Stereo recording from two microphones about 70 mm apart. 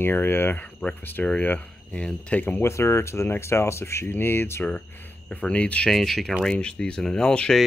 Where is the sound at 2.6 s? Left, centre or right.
Left; by 5.9 s centre.